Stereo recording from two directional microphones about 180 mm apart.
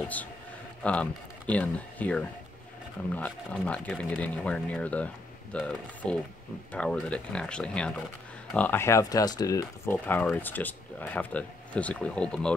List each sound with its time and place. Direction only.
0.8 s speech: 5° left (ahead or behind)